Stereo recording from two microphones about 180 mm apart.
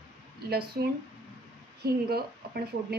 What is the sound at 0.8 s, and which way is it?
A woman's voice, 55° right (ahead or behind).